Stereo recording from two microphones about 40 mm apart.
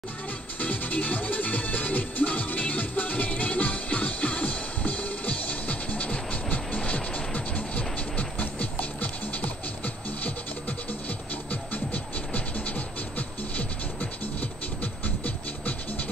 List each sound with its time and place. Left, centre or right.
0.6 s music: left
11.7 s music: left
14.4 s music: left